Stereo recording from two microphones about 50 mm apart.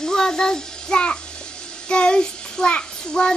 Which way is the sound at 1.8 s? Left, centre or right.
Centre.